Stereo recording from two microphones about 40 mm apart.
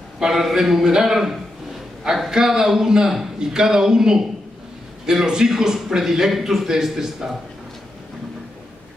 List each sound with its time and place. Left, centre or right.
0.2 s a man's voice: centre
2.3 s a man's voice: centre